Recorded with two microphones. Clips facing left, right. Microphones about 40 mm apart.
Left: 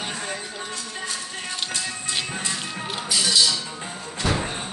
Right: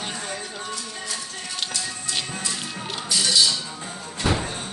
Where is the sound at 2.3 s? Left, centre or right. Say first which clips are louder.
Left 1 dB; left.